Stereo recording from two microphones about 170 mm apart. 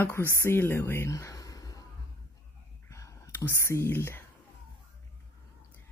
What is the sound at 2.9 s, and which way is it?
Whispering, 20° left (ahead or behind).